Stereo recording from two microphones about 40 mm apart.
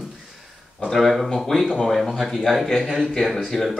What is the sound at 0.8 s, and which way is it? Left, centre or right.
Speech, centre.